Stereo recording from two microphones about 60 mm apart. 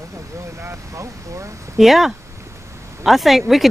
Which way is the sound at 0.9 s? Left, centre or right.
Right.